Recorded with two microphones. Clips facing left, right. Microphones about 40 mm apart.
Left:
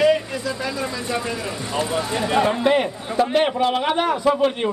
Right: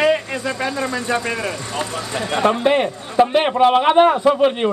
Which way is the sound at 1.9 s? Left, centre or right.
Centre.